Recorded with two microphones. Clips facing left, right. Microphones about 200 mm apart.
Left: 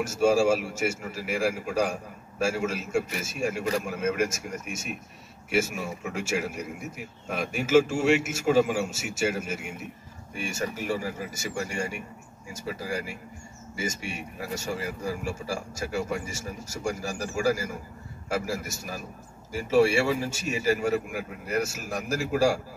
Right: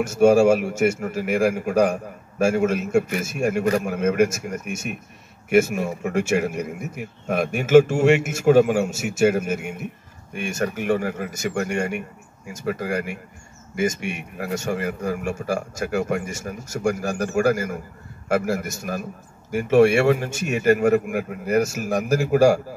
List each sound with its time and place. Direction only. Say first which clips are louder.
0.3 s a man's voice: right 5 dB; 60° right (ahead or behind)